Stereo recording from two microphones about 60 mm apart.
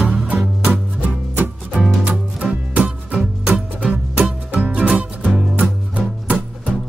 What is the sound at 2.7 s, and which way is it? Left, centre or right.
Music, right.